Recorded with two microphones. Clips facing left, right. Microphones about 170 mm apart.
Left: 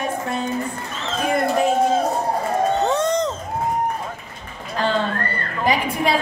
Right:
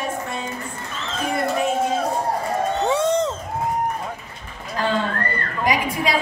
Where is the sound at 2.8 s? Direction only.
10° right (ahead or behind).